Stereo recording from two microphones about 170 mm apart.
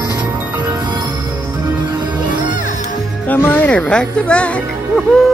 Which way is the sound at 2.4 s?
50° left (ahead or behind).